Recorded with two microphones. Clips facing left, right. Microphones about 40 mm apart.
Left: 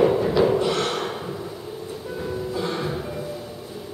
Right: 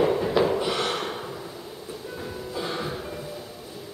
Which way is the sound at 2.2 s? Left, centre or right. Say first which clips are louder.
Left 6 dB; centre.